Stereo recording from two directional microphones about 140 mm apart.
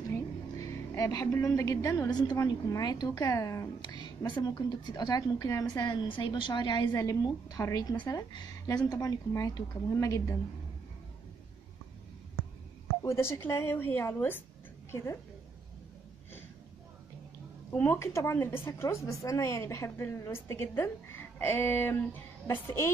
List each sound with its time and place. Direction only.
0.1 s a woman's voice: 20° left (ahead or behind)
13.0 s a woman's voice: 20° left (ahead or behind)
17.6 s a woman's voice: 20° left (ahead or behind)